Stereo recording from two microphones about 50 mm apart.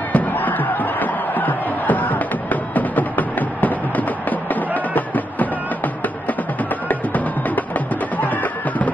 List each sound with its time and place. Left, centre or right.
0.1 s music: left
8.2 s music: left